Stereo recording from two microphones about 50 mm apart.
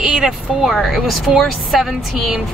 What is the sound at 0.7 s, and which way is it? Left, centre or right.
A woman's voice, centre.